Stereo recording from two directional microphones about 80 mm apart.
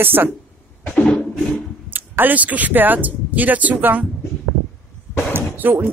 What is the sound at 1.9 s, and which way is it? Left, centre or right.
Speech, right.